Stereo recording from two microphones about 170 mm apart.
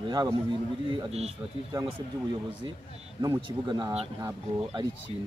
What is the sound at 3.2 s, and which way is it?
Speech, 25° right (ahead or behind).